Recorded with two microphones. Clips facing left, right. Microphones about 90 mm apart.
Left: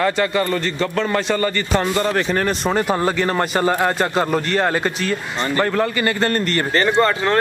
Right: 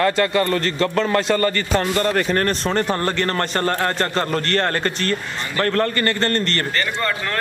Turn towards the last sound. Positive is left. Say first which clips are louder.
# left 7 dB
turn(degrees=30)  # may be behind; listen again after turning